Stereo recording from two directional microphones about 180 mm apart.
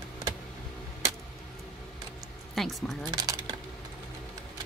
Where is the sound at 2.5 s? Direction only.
Centre (ahead or behind).